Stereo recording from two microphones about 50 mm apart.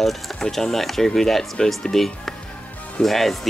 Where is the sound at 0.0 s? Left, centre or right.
Centre.